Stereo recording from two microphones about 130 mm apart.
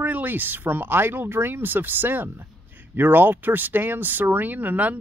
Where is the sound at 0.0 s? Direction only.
15° right (ahead or behind).